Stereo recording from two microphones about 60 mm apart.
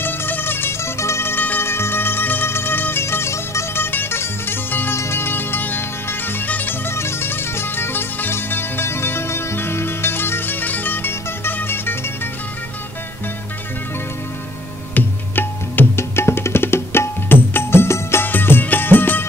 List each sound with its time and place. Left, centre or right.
0.0 s music: left
6.9 s music: left
15.0 s music: left
16.2 s tabla: left
18.2 s music: left